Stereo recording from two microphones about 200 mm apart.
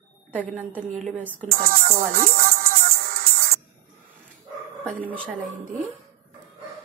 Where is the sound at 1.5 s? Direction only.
50° right (ahead or behind).